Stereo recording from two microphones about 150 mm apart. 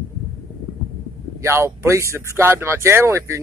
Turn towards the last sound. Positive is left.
turn(degrees=-20)  # may be behind; listen again after turning